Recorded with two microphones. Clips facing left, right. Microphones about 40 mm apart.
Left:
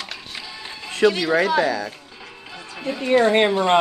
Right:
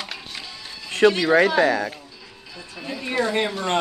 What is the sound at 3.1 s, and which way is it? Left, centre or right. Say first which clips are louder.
Speech: left 7 dB; left.